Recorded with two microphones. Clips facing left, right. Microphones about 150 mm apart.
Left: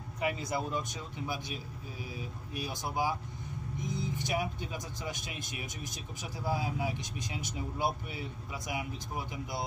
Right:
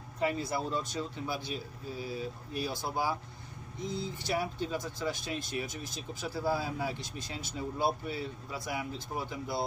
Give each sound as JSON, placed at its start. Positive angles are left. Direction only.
{"t": 0.2, "sound": "speech", "side_deg": 15}